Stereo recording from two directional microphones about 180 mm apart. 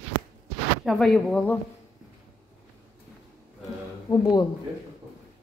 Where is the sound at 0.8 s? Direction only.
Centre (ahead or behind).